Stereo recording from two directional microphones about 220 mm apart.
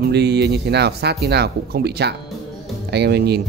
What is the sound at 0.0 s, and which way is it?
Speech, 50° right (ahead or behind).